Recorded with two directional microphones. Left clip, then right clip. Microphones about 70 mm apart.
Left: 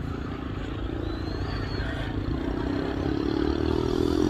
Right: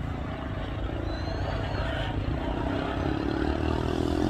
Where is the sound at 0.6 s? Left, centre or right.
Right.